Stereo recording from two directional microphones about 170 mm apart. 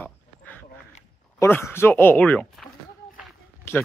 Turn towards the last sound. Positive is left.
turn(degrees=15)  # may be behind; listen again after turning